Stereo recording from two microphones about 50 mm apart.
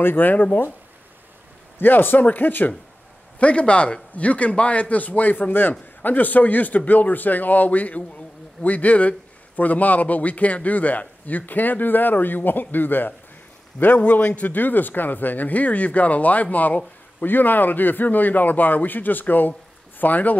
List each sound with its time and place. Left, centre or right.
0.0 s a man's voice: left
1.8 s a man's voice: left
3.3 s a man's voice: left